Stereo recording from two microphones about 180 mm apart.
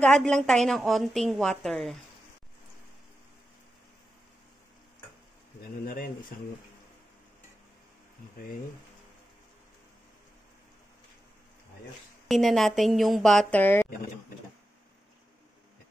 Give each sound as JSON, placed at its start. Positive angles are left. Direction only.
{"t": 0.0, "sound": "a woman's voice", "side_deg": 5}
{"t": 5.6, "sound": "speech", "side_deg": 50}
{"t": 12.3, "sound": "a woman's voice", "side_deg": 0}